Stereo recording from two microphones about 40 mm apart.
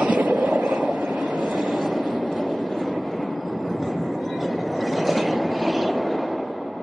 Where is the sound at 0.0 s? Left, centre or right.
Right.